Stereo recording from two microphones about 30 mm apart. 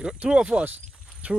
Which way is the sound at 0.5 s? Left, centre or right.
Right.